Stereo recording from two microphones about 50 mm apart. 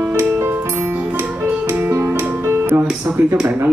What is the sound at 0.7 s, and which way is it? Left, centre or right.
Music, right.